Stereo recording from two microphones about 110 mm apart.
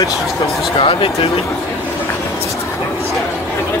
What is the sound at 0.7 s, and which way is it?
Speech, 60° left (ahead or behind).